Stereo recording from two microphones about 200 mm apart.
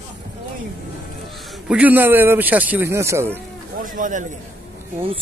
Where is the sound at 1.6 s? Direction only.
5° right (ahead or behind).